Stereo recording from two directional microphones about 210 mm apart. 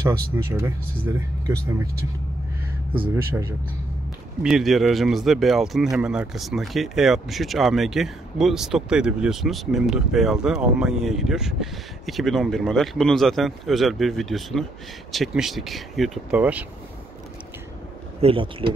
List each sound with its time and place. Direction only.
0.0 s speech: 15° right (ahead or behind)
4.4 s speech: centre (ahead or behind)
18.2 s speech: 25° right (ahead or behind)